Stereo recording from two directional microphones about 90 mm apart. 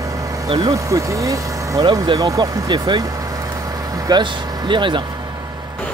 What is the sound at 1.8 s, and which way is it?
Speech, 60° right (ahead or behind).